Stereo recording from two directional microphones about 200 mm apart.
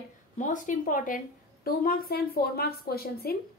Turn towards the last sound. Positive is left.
turn(degrees=50)  # may be behind; listen again after turning